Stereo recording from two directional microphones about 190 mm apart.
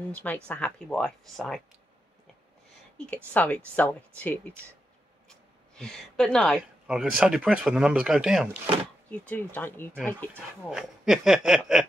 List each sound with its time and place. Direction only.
0.1 s speech: 10° left (ahead or behind)
3.3 s speech: 10° left (ahead or behind)
5.8 s speech: 5° left (ahead or behind)
9.1 s speech: 10° left (ahead or behind)
10.3 s speech: centre (ahead or behind)